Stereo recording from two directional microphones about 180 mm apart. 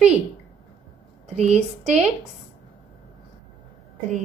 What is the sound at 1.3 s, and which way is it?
Speech, 40° right (ahead or behind).